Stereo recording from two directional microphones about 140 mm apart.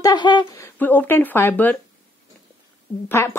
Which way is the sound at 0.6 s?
15° left (ahead or behind).